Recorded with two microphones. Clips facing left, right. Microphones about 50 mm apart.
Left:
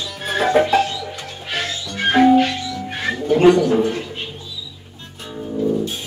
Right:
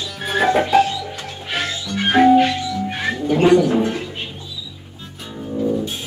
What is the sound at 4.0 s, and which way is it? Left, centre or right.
Music, centre.